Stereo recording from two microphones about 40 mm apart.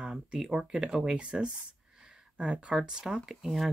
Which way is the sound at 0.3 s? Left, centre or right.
Centre.